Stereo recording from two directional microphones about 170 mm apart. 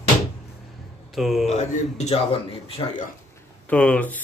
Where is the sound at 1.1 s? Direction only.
Centre (ahead or behind).